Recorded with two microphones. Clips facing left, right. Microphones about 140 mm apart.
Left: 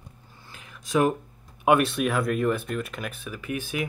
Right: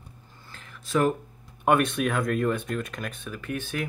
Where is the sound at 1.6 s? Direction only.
5° left (ahead or behind).